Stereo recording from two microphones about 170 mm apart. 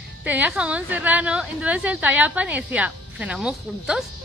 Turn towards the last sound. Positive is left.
turn(degrees=-5)  # may be behind; listen again after turning